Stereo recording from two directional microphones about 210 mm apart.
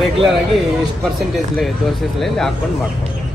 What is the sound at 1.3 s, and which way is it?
Speech, centre (ahead or behind).